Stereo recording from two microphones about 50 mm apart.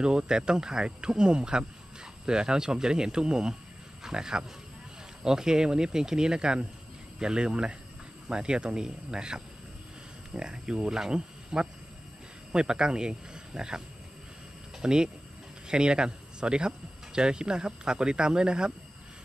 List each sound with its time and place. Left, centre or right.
0.0 s speech: centre